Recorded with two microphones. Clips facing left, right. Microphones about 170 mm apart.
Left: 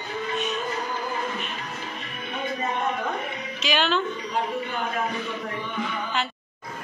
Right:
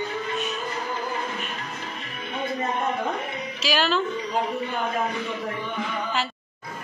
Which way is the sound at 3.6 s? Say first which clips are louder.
Right 1 dB; 5° right (ahead or behind).